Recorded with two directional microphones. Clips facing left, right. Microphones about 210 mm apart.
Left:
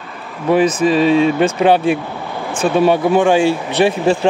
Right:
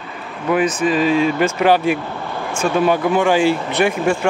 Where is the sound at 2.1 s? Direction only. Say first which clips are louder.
Left 1 dB; 15° left (ahead or behind).